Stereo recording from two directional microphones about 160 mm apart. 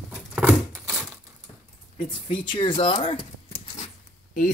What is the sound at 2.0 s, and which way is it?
Speech, 30° left (ahead or behind).